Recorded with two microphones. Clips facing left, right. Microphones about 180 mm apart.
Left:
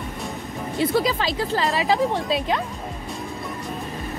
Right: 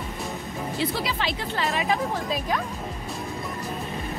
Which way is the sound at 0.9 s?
40° left (ahead or behind).